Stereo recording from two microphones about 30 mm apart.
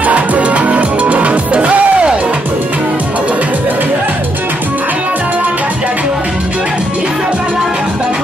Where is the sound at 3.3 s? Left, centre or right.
Right.